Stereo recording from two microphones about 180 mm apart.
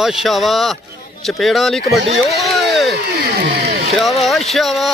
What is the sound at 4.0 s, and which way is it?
Speech, centre (ahead or behind).